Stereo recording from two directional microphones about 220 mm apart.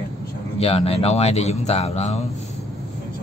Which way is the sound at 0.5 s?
25° left (ahead or behind).